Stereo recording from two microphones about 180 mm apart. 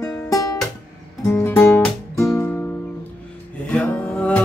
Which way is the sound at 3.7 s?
10° left (ahead or behind).